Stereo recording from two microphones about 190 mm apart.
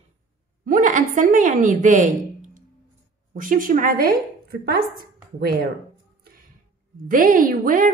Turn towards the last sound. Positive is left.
turn(degrees=-45)  # may be behind; listen again after turning